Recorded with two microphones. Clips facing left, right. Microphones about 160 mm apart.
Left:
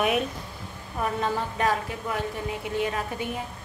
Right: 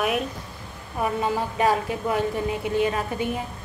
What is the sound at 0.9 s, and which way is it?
A woman's voice, 15° right (ahead or behind).